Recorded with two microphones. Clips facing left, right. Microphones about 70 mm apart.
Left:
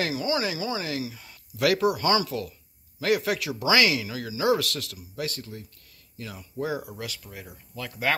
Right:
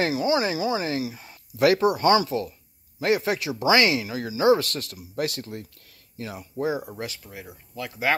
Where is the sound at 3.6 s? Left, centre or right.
Right.